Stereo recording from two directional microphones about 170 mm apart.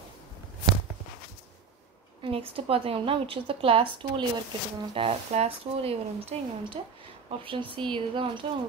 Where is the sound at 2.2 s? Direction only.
35° right (ahead or behind).